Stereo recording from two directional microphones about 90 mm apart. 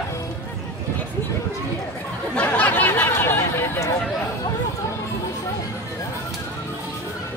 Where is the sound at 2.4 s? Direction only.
15° left (ahead or behind).